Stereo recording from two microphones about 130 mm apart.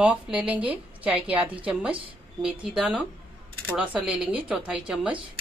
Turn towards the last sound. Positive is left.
turn(degrees=-5)  # may be behind; listen again after turning